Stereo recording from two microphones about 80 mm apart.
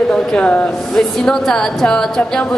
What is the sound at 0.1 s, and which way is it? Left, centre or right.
A woman's voice, centre.